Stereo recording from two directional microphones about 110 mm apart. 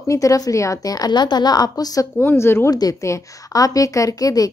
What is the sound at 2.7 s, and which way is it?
A woman's voice, 35° left (ahead or behind).